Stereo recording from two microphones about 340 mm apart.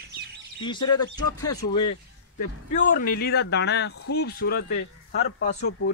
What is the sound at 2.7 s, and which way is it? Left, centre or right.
Speech, left.